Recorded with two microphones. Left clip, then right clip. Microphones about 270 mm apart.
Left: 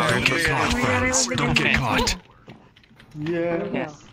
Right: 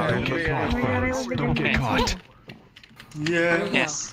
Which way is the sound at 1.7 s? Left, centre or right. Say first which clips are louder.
Left 2 dB; centre.